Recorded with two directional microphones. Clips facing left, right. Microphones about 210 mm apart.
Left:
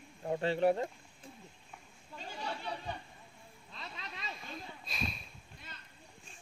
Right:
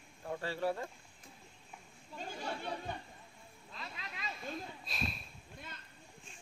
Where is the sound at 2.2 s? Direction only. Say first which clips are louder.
Even; 50° right (ahead or behind).